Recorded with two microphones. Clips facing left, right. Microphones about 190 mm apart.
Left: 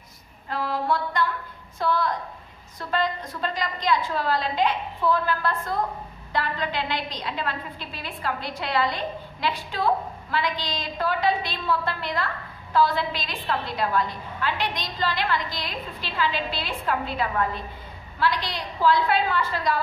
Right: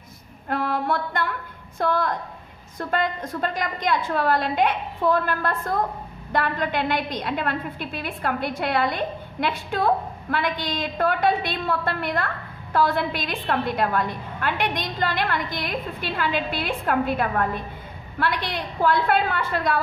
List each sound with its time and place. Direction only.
0.5 s a woman's voice: 55° right (ahead or behind)